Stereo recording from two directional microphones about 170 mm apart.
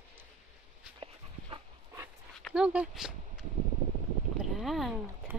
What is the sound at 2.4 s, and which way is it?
Speech, 5° right (ahead or behind).